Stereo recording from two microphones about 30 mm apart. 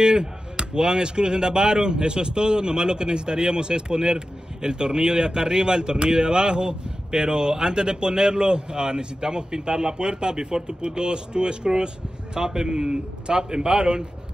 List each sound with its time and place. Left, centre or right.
0.0 s speech: right